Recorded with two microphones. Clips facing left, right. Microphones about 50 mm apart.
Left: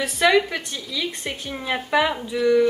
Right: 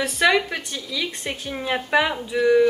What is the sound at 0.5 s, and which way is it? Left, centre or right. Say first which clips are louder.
A woman's voice: even; centre.